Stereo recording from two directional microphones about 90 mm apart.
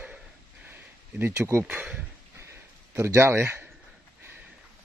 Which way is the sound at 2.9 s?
30° right (ahead or behind).